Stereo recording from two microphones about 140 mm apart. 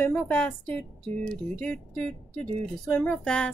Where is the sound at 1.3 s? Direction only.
5° left (ahead or behind).